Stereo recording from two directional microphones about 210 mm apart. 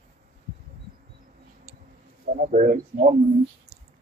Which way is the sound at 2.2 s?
40° right (ahead or behind).